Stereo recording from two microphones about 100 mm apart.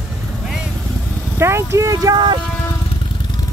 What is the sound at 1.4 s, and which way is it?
Speech, 25° right (ahead or behind).